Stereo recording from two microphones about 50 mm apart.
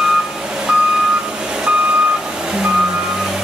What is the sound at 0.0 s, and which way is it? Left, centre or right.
Reversing beeps, centre.